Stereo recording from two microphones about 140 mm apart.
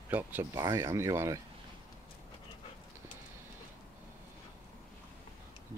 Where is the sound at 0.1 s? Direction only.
15° right (ahead or behind).